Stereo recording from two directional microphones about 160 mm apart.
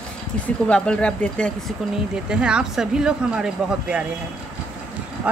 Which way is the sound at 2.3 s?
5° right (ahead or behind).